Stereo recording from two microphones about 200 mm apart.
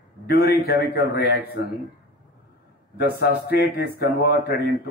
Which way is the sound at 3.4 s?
50° left (ahead or behind).